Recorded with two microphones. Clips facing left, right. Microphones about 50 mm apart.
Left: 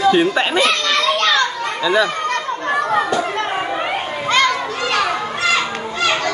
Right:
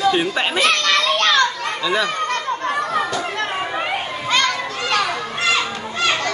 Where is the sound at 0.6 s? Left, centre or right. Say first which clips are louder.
Even; right.